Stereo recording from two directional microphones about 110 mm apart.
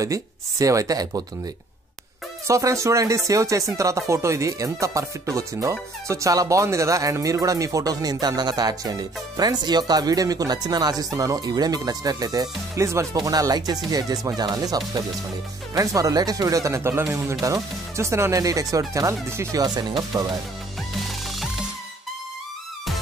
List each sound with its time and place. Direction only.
0.0 s speech: 30° right (ahead or behind)
2.4 s speech: 30° right (ahead or behind)
19.6 s speech: 40° right (ahead or behind)
20.1 s speech: 30° right (ahead or behind)